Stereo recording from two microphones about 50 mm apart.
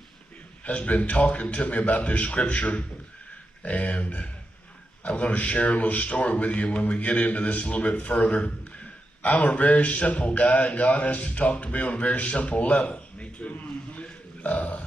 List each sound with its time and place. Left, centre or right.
0.7 s a man's voice: left